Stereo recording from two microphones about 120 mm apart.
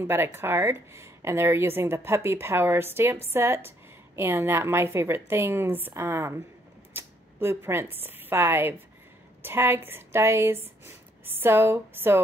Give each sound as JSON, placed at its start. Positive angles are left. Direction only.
{"t": 0.0, "sound": "speech", "side_deg": -20}